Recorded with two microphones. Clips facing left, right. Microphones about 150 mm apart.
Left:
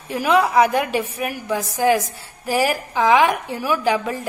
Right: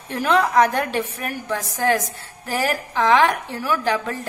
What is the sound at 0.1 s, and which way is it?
A woman's voice, 10° left (ahead or behind).